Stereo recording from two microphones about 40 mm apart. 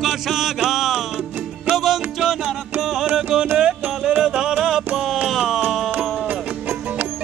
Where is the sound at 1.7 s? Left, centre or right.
Centre.